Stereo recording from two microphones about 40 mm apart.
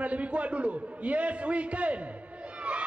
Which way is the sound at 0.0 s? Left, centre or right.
Right.